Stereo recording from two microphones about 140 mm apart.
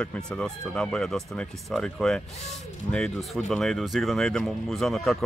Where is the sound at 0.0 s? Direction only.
5° left (ahead or behind).